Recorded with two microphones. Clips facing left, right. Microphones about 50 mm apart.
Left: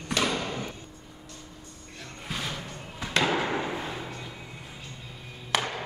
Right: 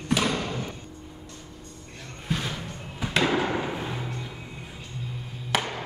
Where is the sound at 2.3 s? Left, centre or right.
Centre.